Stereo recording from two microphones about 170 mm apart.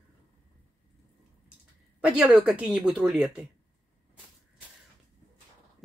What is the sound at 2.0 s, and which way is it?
Speech, 5° right (ahead or behind).